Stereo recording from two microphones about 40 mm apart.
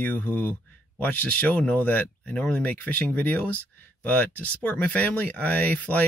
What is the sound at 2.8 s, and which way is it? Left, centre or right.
Speech, left.